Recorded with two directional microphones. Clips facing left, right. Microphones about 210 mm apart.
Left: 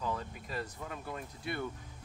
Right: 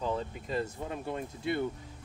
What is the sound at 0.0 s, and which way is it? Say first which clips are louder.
Speech: right 5 dB; 25° right (ahead or behind).